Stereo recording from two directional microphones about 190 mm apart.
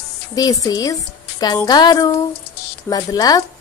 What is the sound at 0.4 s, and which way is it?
A woman's voice, 20° left (ahead or behind).